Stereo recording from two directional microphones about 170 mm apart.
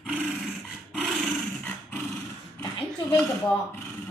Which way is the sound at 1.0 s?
5° left (ahead or behind).